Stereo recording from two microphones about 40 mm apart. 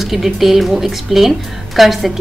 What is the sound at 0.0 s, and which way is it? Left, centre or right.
A woman's voice, centre.